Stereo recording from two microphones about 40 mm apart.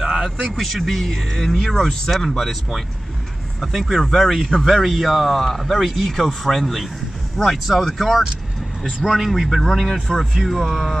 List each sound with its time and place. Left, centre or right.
0.0 s a sound: centre
0.6 s speech: centre
4.6 s a man's voice: centre
9.6 s speech: centre
9.8 s speech: centre
10.3 s speech: centre